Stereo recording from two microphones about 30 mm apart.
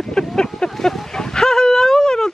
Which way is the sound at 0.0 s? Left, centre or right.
Left.